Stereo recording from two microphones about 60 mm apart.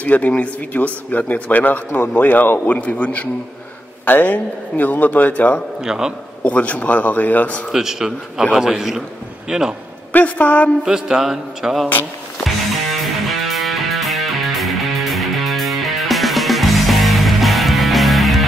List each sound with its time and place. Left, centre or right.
0.0 s a man's voice: left
5.9 s a man's voice: centre
6.4 s a man's voice: left
7.7 s a man's voice: centre
10.1 s a man's voice: left
10.9 s a man's voice: centre
12.4 s music: centre